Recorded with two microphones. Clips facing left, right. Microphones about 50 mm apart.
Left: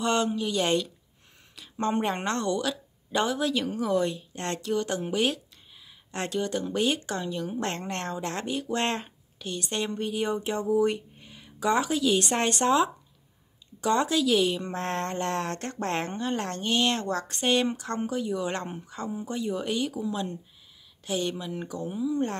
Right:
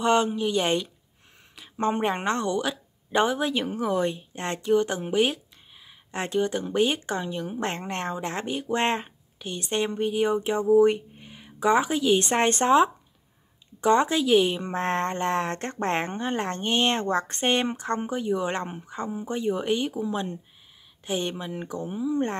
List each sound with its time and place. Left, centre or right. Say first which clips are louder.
0.0 s a woman's voice: right 4 dB; centre
12.3 s a woman's voice: right 3 dB; right